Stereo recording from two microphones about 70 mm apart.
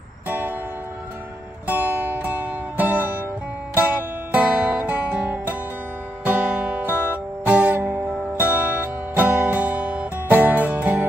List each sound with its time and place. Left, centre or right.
0.3 s music: right
1.7 s music: right